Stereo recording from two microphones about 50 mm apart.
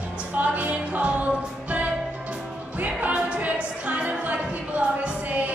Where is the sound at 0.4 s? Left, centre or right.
Right.